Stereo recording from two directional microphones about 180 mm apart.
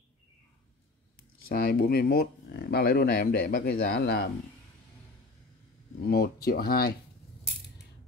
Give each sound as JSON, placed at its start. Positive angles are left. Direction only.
{"t": 1.5, "sound": "speech", "side_deg": 55}
{"t": 6.0, "sound": "speech", "side_deg": 60}